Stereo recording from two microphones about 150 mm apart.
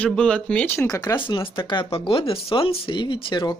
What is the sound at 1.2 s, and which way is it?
Speech, 35° left (ahead or behind).